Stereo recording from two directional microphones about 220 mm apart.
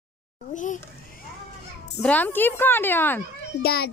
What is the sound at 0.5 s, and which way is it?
Speech, 35° left (ahead or behind).